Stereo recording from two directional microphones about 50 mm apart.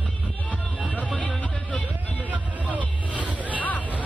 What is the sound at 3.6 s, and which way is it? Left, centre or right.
Hubbub, left.